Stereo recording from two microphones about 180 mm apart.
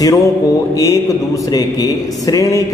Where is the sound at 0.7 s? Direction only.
20° left (ahead or behind).